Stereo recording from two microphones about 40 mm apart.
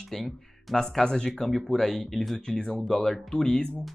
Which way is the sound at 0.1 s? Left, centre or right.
Centre.